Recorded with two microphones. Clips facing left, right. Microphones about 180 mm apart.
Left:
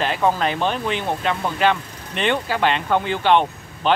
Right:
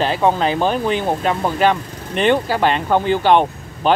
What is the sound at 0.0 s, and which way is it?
Speech, 30° right (ahead or behind).